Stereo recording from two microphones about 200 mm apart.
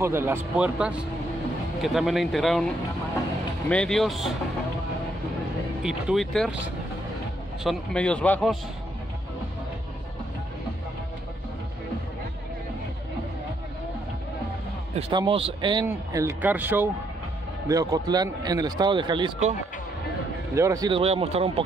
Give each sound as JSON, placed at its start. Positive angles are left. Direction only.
{"t": 0.0, "sound": "a man's voice", "side_deg": -10}
{"t": 5.8, "sound": "a man's voice", "side_deg": -5}
{"t": 7.6, "sound": "a man's voice", "side_deg": 5}
{"t": 15.0, "sound": "a man's voice", "side_deg": -25}
{"t": 20.5, "sound": "speech", "side_deg": -15}
{"t": 21.0, "sound": "a man's voice", "side_deg": -30}